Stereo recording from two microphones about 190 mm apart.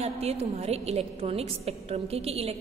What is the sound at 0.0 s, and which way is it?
A woman's voice, 35° right (ahead or behind).